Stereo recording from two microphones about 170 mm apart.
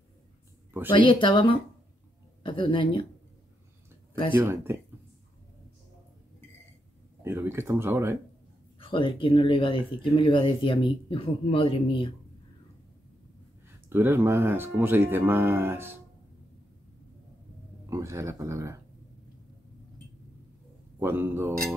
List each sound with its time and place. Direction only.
0.8 s a woman's voice: 30° left (ahead or behind)
4.1 s speech: 30° left (ahead or behind)
4.4 s speech: 15° right (ahead or behind)
7.2 s speech: 15° right (ahead or behind)
8.7 s speech: 30° left (ahead or behind)
13.8 s speech: 15° right (ahead or behind)
17.8 s speech: 15° right (ahead or behind)
21.0 s speech: 10° right (ahead or behind)